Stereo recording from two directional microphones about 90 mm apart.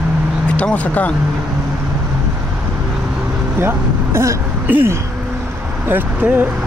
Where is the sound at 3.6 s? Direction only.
30° right (ahead or behind).